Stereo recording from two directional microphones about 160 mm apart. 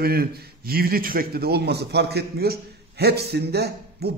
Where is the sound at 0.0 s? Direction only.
70° right (ahead or behind).